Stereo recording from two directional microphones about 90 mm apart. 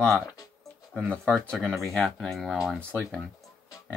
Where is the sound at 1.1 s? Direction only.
10° left (ahead or behind).